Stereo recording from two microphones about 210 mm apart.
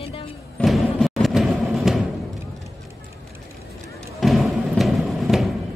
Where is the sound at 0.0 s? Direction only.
25° left (ahead or behind).